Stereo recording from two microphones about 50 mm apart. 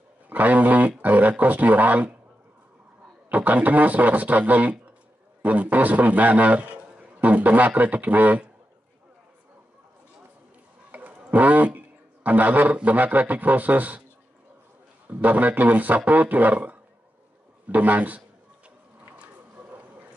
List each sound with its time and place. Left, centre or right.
0.3 s a man's voice: right
3.3 s a man's voice: right
10.9 s a man's voice: right
15.0 s a man's voice: right
19.1 s a sound: right